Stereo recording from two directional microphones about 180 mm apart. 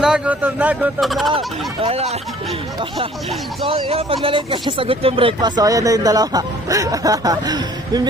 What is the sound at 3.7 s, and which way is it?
Speech, 30° right (ahead or behind).